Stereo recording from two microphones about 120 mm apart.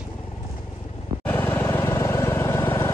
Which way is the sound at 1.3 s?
15° left (ahead or behind).